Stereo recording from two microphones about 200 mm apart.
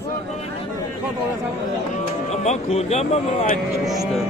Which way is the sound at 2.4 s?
35° left (ahead or behind).